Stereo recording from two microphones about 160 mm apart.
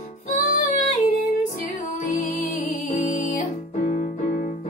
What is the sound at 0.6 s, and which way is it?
Female singing, 55° left (ahead or behind).